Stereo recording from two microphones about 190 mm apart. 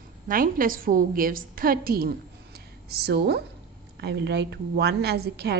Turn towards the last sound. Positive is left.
turn(degrees=-55)  # may be behind; listen again after turning